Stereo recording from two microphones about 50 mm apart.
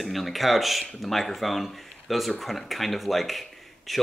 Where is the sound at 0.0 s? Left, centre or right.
Centre.